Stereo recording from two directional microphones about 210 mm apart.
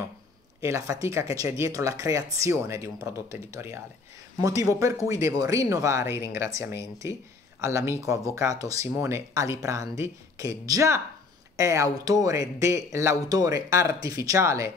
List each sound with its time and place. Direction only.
0.6 s speech: 15° right (ahead or behind)